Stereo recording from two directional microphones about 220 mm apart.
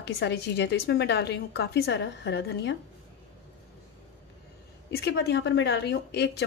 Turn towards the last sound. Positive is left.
turn(degrees=50)  # may be behind; listen again after turning